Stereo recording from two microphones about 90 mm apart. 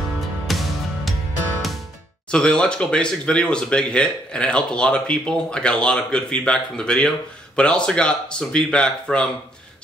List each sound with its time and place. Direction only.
0.5 s music: centre (ahead or behind)
2.3 s speech: 10° left (ahead or behind)